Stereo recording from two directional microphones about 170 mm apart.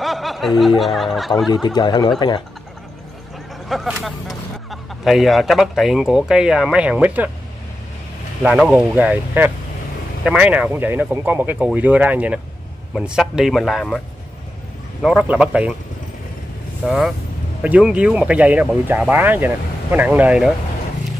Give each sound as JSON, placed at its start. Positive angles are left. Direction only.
{"t": 0.0, "sound": "speech", "side_deg": 0}
{"t": 1.8, "sound": "speech", "side_deg": 25}
{"t": 3.6, "sound": "speech", "side_deg": 0}
{"t": 8.4, "sound": "speech", "side_deg": -5}
{"t": 16.8, "sound": "speech", "side_deg": 0}